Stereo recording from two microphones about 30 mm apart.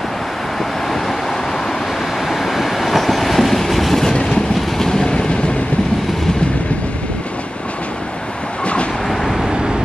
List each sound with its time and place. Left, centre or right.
2.2 s train: centre
4.7 s train: centre
9.1 s vehicle: centre